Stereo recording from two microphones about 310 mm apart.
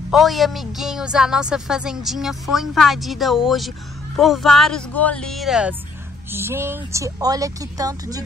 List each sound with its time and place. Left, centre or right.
0.1 s a woman's voice: centre